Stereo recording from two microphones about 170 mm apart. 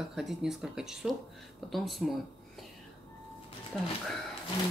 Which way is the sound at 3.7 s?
5° left (ahead or behind).